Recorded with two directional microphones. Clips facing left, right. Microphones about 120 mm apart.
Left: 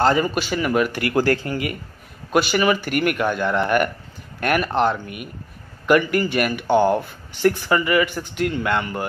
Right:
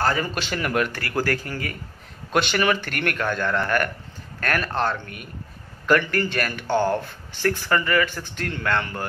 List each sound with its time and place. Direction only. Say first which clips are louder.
0.0 s speech: left 6 dB; 20° left (ahead or behind)
0.3 s speech: left 4 dB; 10° left (ahead or behind)
0.9 s speech: left 6 dB; 20° left (ahead or behind)
2.3 s speech: left 3 dB; 5° left (ahead or behind)